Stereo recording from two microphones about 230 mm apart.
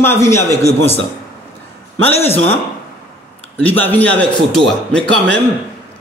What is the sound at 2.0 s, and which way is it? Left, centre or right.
Speech, centre.